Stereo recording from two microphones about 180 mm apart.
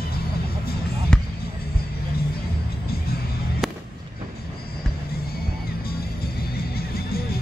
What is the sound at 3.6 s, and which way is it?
Fireworks, centre (ahead or behind).